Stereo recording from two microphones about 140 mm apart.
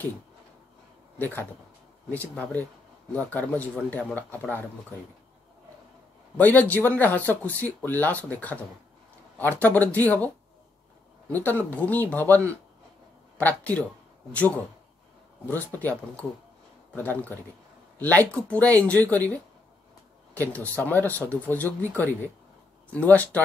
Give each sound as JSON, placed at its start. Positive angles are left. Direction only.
{"t": 1.1, "sound": "speech", "side_deg": 15}
{"t": 6.3, "sound": "speech", "side_deg": 10}
{"t": 13.4, "sound": "speech", "side_deg": 10}
{"t": 15.4, "sound": "speech", "side_deg": 10}